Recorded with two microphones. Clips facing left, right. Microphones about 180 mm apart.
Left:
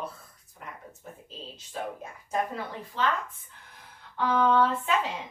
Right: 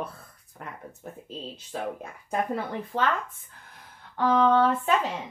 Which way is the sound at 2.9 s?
55° right (ahead or behind).